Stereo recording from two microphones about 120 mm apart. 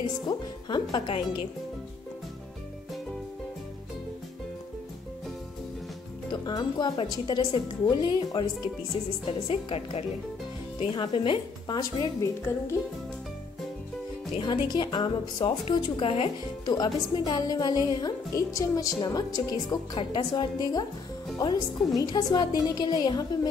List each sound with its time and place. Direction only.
0.3 s speech: 35° left (ahead or behind)
6.3 s a woman's voice: 35° left (ahead or behind)
14.3 s a woman's voice: 40° left (ahead or behind)
16.6 s speech: 35° left (ahead or behind)